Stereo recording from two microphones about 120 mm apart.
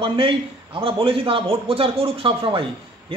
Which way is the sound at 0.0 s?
45° right (ahead or behind).